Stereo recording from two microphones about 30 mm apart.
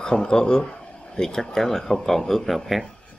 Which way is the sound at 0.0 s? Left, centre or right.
Left.